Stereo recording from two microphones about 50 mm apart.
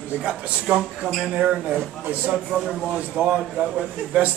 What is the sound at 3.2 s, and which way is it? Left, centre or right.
Speech, right.